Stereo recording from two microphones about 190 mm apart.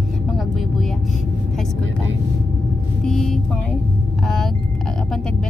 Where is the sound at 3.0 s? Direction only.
Centre (ahead or behind).